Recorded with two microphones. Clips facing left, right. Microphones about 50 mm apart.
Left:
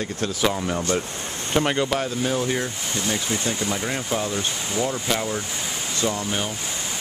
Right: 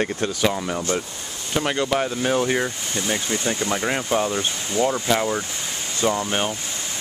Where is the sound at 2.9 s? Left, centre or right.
Centre.